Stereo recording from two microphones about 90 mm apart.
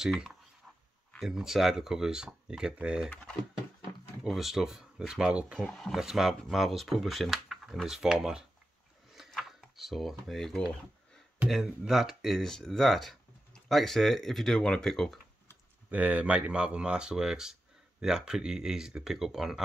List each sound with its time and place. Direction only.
0.0 s speech: 5° right (ahead or behind)
4.2 s speech: 5° right (ahead or behind)
5.6 s speech: 5° left (ahead or behind)
5.9 s speech: 5° right (ahead or behind)
9.1 s a sound: centre (ahead or behind)
11.4 s speech: 5° right (ahead or behind)
15.9 s speech: 15° right (ahead or behind)